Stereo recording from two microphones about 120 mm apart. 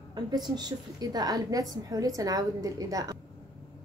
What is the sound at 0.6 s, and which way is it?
A woman's voice, 35° right (ahead or behind).